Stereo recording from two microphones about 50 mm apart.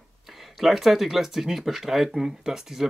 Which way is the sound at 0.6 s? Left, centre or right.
Centre.